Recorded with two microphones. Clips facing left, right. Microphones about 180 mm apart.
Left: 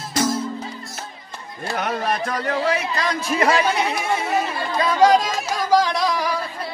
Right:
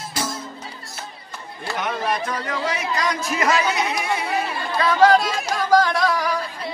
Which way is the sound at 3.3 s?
30° left (ahead or behind).